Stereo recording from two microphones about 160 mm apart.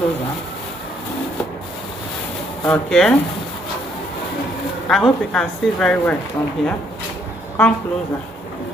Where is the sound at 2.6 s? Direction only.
5° left (ahead or behind).